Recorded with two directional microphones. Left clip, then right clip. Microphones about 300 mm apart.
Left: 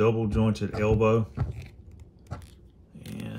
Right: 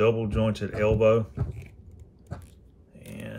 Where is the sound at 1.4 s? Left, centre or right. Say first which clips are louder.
Even; centre.